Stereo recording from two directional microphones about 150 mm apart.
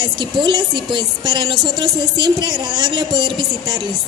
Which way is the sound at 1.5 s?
Centre (ahead or behind).